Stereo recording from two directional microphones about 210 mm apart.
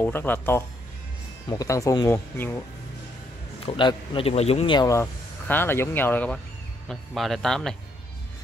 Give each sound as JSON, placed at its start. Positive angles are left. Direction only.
{"t": 0.0, "sound": "speech", "side_deg": 10}
{"t": 3.6, "sound": "a man's voice", "side_deg": 25}